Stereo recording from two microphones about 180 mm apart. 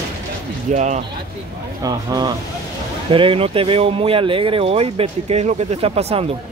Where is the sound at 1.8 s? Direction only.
20° right (ahead or behind).